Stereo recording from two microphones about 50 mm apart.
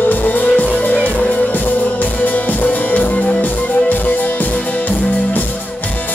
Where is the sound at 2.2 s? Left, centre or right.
Left.